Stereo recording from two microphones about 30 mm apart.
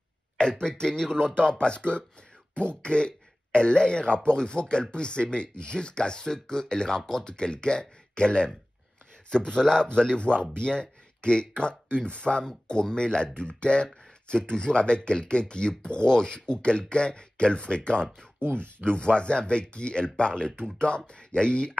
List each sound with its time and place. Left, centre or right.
0.4 s speech: left
7.3 s speech: left
10.1 s speech: left